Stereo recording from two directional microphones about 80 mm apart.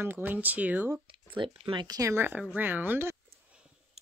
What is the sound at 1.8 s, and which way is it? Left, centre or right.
Speech, right.